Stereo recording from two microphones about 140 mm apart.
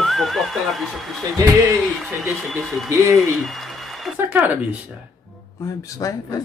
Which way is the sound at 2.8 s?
20° right (ahead or behind).